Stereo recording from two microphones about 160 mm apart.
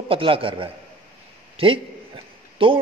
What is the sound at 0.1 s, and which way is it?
A man's voice, 35° right (ahead or behind).